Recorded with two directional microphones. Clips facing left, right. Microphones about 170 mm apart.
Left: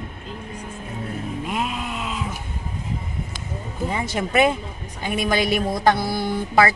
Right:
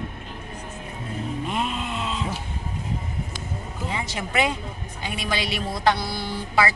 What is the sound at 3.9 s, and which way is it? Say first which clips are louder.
Speech: left 5 dB; 50° left (ahead or behind).